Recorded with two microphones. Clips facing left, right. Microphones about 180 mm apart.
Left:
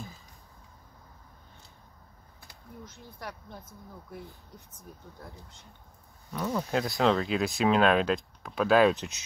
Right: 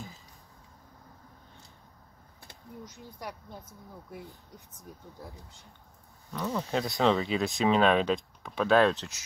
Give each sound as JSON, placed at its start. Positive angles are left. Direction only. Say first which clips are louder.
{"t": 2.8, "sound": "speech", "louder": "right 1 dB", "side_deg": -15}
{"t": 5.4, "sound": "speech", "louder": "left 1 dB", "side_deg": 0}
{"t": 8.9, "sound": "speech", "louder": "left 3 dB", "side_deg": 20}